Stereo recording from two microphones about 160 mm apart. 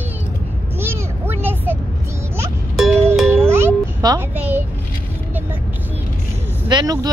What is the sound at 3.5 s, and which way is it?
Music, 15° right (ahead or behind).